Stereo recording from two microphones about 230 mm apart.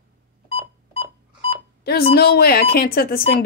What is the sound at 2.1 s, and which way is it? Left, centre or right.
Speech, left.